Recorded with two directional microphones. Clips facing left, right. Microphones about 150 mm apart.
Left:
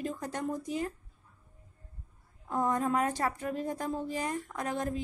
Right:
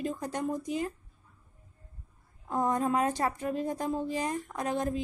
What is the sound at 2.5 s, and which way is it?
A woman's voice, 20° right (ahead or behind).